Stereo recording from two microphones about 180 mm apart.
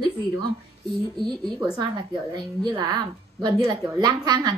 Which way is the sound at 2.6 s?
25° right (ahead or behind).